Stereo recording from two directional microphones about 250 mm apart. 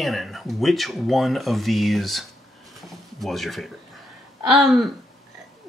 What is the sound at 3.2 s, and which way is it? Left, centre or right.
Speech, centre.